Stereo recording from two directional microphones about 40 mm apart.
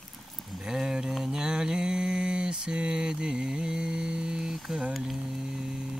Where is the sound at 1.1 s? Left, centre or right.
Centre.